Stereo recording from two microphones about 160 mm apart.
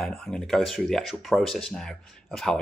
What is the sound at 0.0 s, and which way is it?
Speech, centre (ahead or behind).